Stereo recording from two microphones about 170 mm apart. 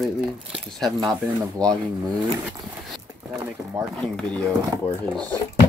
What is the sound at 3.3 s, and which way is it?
Speech, 20° right (ahead or behind).